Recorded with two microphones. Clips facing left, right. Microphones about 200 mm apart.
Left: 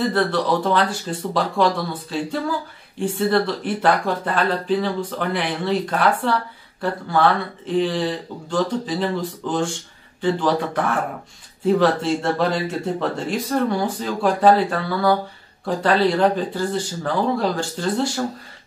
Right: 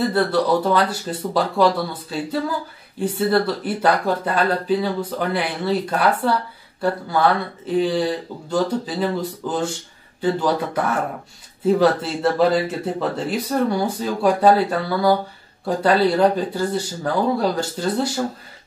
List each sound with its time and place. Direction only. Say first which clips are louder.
0.1 s speech: right 2 dB; 5° right (ahead or behind)
7.6 s speech: right 1 dB; 5° right (ahead or behind)